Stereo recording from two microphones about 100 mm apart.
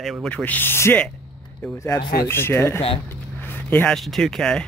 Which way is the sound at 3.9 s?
5° left (ahead or behind).